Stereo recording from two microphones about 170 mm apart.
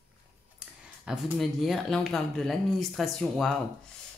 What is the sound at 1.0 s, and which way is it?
Speech, centre (ahead or behind).